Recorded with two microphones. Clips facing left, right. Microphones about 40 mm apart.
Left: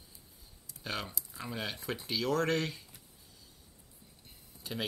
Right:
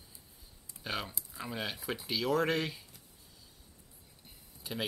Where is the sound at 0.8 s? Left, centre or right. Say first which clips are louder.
Right 1 dB; centre.